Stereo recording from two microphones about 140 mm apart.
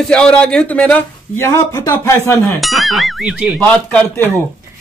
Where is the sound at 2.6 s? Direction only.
Centre (ahead or behind).